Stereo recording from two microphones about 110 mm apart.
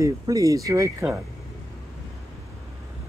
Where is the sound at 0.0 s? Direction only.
30° right (ahead or behind).